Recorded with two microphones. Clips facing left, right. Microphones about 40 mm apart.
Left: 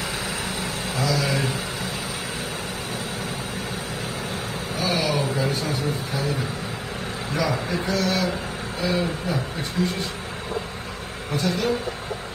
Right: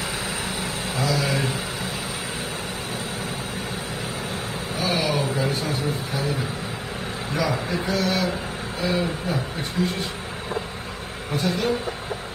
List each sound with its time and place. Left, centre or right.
0.6 s vehicle: centre
4.7 s vehicle: centre
7.3 s speech: centre
11.3 s speech: centre